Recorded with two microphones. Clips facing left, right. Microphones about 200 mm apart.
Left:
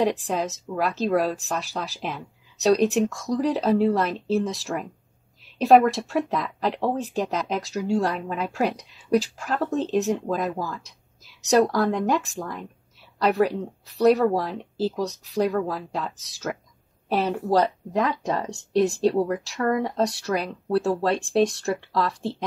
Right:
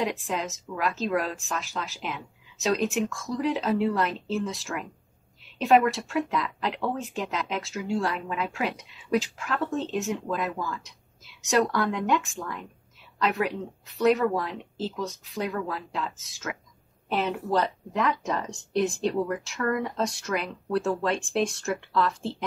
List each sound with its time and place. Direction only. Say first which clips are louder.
0.3 s speech: left 4 dB; 40° left (ahead or behind)